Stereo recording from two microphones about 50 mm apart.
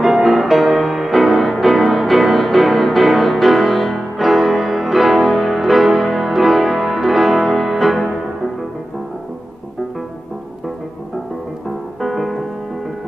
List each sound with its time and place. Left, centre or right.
0.0 s music: centre
12.0 s music: centre